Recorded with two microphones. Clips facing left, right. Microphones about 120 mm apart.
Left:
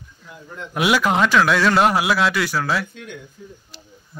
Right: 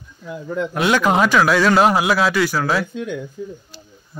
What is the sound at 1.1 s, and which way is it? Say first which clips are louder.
A man's voice: right 3 dB; 5° right (ahead or behind).